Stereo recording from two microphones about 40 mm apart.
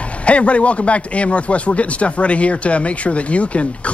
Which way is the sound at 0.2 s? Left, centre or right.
Left.